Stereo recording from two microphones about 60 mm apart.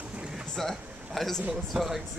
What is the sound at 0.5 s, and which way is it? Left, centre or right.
A man's voice, centre.